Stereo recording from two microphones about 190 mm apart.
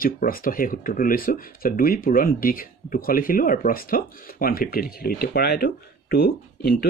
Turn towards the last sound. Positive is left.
turn(degrees=55)  # may be behind; listen again after turning